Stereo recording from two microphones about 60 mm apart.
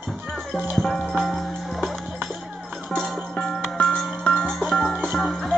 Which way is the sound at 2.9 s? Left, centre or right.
Centre.